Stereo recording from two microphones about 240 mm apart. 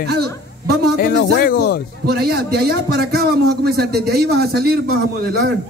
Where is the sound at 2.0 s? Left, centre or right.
Right.